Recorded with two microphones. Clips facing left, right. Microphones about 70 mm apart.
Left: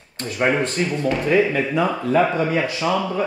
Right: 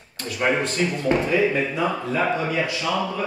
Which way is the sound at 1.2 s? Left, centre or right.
Left.